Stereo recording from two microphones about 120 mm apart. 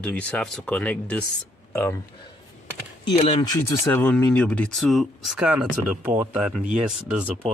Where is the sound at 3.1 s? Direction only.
55° left (ahead or behind).